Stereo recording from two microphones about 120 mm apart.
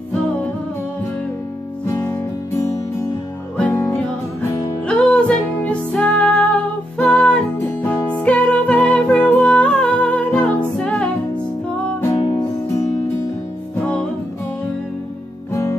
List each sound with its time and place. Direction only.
1.9 s music: 30° left (ahead or behind)
3.5 s music: 15° left (ahead or behind)
12.2 s music: 40° left (ahead or behind)